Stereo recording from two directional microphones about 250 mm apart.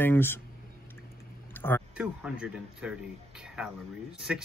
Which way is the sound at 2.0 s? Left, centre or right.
Centre.